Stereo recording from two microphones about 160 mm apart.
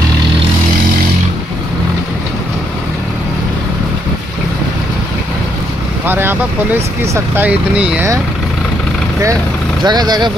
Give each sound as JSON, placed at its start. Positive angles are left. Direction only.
{"t": 6.0, "sound": "speech", "side_deg": -10}
{"t": 9.8, "sound": "speech", "side_deg": -25}